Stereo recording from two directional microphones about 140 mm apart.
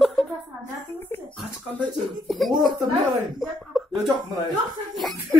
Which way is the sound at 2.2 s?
Centre (ahead or behind).